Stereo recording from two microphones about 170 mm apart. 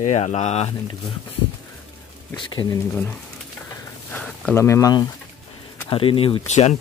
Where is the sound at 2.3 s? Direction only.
25° left (ahead or behind).